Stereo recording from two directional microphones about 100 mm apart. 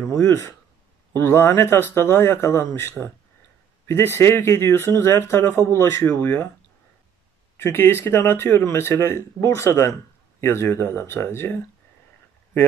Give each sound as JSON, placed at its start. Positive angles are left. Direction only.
{"t": 0.0, "sound": "speech", "side_deg": 30}
{"t": 7.5, "sound": "speech", "side_deg": 25}